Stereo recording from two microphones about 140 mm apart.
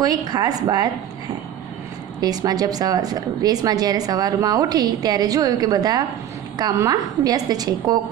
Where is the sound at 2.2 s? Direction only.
25° right (ahead or behind).